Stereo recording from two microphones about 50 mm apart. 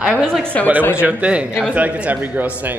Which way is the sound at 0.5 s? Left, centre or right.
Left.